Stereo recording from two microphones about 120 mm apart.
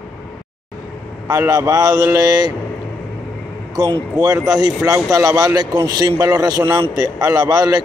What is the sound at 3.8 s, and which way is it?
A man's voice, 30° right (ahead or behind).